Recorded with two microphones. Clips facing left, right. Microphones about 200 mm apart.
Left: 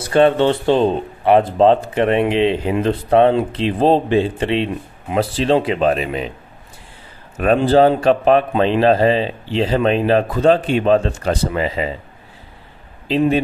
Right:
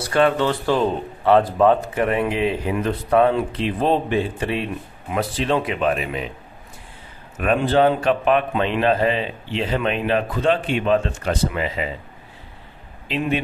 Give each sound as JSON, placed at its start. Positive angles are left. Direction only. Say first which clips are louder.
{"t": 0.1, "sound": "a man's voice", "louder": "left 5 dB", "side_deg": 25}
{"t": 7.3, "sound": "a man's voice", "louder": "left 5 dB", "side_deg": 35}
{"t": 13.1, "sound": "a man's voice", "louder": "left 7 dB", "side_deg": 35}